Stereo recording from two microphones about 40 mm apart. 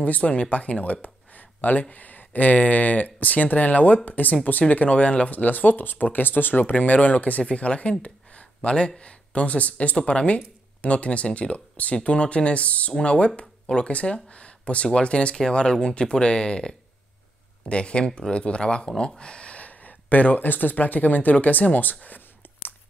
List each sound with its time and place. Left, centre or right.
0.0 s speech: left
7.4 s speech: left
8.6 s speech: left